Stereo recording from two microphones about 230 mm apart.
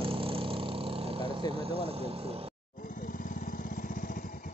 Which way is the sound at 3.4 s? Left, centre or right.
Left.